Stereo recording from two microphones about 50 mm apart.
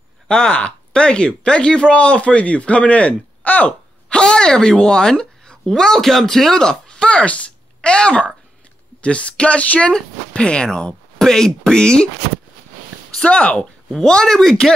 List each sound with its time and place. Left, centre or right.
0.3 s speech: left
4.1 s speech: centre
11.1 s speech: centre
13.1 s speech: left
13.6 s speech: centre